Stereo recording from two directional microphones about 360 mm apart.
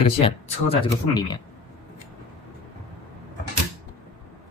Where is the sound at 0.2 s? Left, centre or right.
Centre.